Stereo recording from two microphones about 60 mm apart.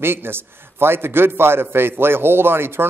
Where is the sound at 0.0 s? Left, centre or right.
Right.